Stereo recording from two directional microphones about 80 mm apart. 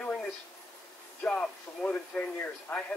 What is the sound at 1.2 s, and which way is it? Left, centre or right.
Speech, centre.